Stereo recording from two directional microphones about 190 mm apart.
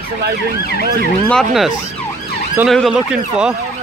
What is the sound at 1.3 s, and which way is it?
Speech, centre (ahead or behind).